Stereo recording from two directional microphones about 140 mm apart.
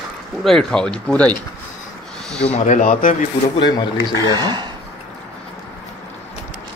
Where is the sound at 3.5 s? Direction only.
30° left (ahead or behind).